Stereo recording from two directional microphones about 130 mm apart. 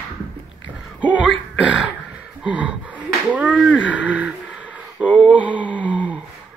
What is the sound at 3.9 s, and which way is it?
Speech, 10° right (ahead or behind).